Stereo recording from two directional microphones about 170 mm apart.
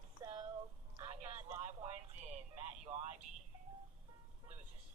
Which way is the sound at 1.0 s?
40° right (ahead or behind).